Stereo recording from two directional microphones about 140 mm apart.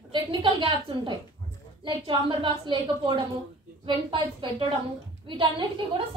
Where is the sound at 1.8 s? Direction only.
35° right (ahead or behind).